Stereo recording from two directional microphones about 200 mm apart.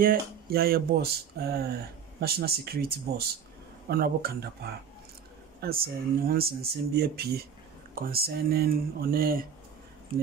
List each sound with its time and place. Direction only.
0.0 s speech: 45° right (ahead or behind)
5.6 s speech: 50° right (ahead or behind)